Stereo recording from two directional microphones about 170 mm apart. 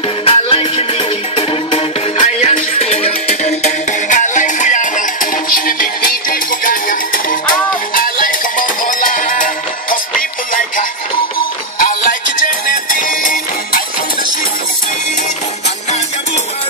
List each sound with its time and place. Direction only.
0.2 s music: 35° left (ahead or behind); by 9.9 s 50° left (ahead or behind)
11.3 s music: 55° left (ahead or behind)